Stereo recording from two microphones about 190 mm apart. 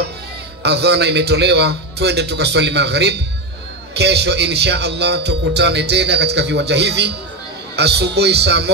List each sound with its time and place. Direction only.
0.6 s speech: 60° right (ahead or behind)